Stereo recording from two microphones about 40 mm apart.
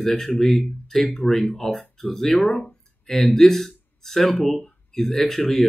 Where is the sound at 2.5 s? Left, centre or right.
Left.